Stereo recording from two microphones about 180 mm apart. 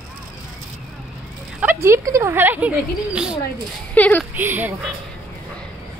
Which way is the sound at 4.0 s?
10° left (ahead or behind).